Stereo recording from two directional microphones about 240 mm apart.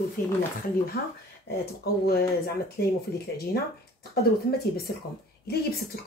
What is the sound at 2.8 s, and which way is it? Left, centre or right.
Speech, left.